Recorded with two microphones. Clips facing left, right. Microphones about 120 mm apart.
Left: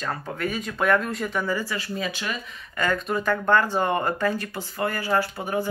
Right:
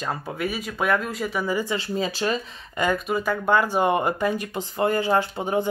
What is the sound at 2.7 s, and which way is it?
Speech, 15° right (ahead or behind).